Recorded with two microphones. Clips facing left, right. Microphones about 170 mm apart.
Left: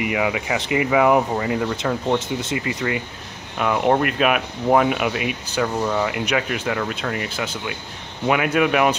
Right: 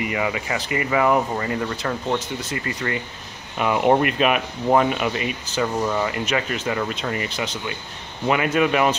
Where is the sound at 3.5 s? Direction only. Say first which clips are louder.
Right 1 dB; 5° right (ahead or behind).